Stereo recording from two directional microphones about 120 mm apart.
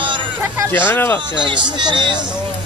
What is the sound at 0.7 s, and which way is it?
Speech, 15° left (ahead or behind).